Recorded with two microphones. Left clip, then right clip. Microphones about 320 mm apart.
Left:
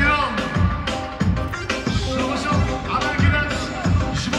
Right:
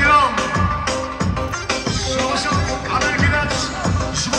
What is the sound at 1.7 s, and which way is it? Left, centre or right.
Music, centre.